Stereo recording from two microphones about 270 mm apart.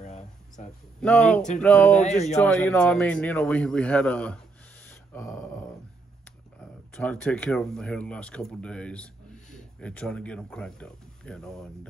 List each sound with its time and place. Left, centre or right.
0.0 s a sound: left
1.0 s speech: centre
2.0 s speech: left
2.4 s speech: centre
5.1 s a sound: centre
7.0 s speech: centre